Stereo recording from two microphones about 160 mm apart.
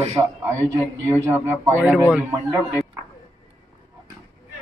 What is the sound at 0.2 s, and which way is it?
A man's voice, 15° right (ahead or behind).